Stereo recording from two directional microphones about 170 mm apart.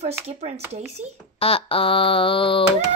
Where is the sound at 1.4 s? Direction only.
35° left (ahead or behind).